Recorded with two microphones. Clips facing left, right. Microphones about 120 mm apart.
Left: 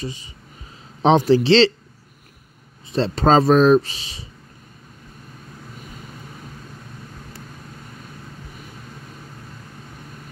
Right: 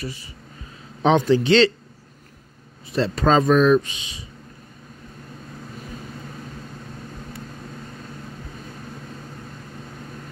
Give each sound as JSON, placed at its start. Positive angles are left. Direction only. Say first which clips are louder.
{"t": 0.0, "sound": "speech", "louder": "left 2 dB", "side_deg": 20}
{"t": 1.0, "sound": "speech", "louder": "left 2 dB", "side_deg": 30}
{"t": 2.9, "sound": "speech", "louder": "left 2 dB", "side_deg": 30}